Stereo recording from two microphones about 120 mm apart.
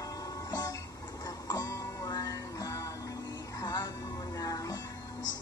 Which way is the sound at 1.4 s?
30° left (ahead or behind).